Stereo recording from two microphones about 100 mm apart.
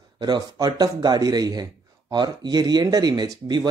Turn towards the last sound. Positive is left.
turn(degrees=-45)  # may be behind; listen again after turning